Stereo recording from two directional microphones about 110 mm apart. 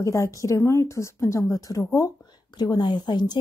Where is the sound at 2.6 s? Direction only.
40° left (ahead or behind).